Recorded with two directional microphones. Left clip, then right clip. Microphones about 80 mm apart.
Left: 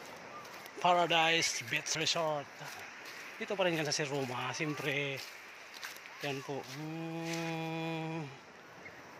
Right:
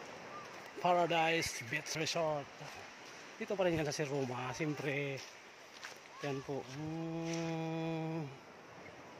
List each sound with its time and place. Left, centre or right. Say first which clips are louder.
0.7 s speech: left 3 dB; centre
3.3 s speech: left 2 dB; centre
6.2 s speech: left 2 dB; right